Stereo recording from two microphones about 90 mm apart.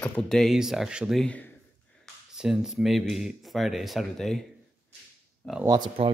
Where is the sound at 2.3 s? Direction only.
5° right (ahead or behind); by 5.6 s 15° left (ahead or behind).